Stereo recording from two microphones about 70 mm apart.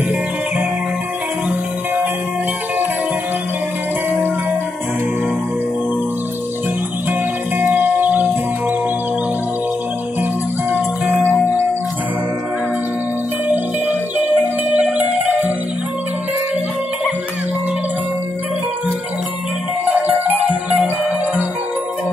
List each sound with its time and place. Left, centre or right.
7.1 s music: right
10.7 s music: right
13.5 s music: right
19.8 s music: right